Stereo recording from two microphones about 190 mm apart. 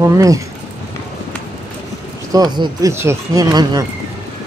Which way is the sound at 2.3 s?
20° right (ahead or behind).